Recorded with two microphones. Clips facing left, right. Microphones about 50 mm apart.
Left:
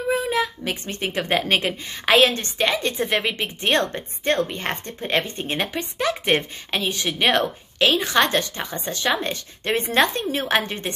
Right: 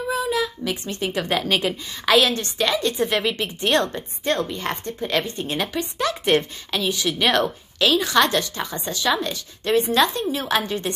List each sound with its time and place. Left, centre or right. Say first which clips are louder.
0.1 s a woman's voice: left 1 dB; left